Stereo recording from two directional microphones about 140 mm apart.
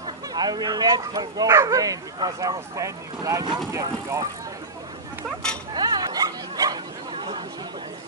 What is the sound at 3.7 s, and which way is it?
Vehicle, 20° right (ahead or behind).